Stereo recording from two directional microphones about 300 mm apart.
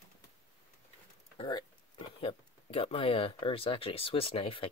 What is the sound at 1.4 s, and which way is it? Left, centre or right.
Speech, centre.